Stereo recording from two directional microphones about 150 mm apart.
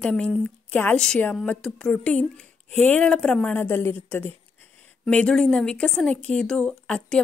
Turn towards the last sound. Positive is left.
turn(degrees=5)  # may be behind; listen again after turning